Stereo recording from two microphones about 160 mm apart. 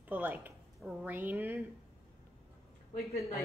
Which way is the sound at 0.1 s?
10° right (ahead or behind).